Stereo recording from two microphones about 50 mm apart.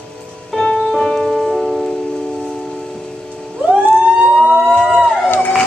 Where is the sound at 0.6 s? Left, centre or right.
Centre.